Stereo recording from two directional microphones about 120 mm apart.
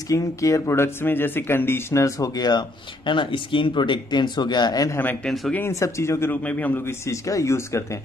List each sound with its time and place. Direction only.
0.1 s speech: 25° left (ahead or behind)
4.9 s speech: 15° left (ahead or behind)